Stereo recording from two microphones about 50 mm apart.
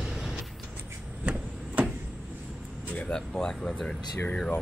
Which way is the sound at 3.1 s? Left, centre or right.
Centre.